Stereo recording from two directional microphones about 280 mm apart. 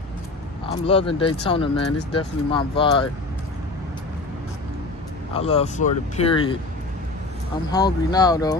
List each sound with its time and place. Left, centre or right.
0.7 s speech: left
5.3 s speech: left
7.7 s speech: centre